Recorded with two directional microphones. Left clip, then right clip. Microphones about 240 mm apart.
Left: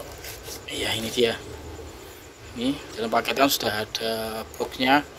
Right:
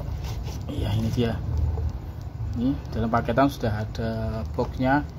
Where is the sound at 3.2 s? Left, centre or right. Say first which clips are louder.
Left 1 dB; left.